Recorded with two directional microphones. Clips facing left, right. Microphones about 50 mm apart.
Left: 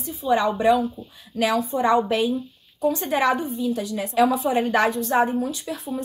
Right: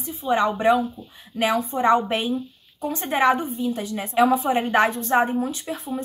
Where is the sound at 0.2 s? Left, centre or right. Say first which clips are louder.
Even; right.